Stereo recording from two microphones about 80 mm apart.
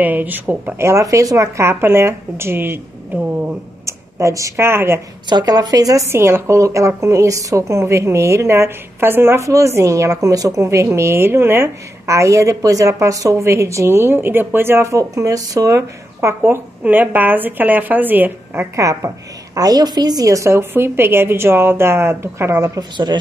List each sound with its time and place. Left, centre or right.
0.0 s a woman's voice: right
3.8 s a sound: right
4.6 s a woman's voice: right
5.3 s speech: right
6.0 s a woman's voice: right
9.5 s a woman's voice: right
16.8 s speech: right
18.8 s a woman's voice: right
22.8 s a woman's voice: right